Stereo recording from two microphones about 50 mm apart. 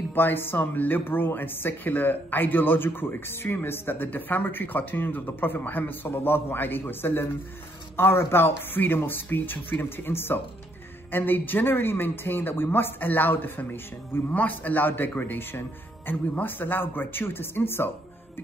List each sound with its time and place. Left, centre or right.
0.1 s speech: left
14.3 s speech: left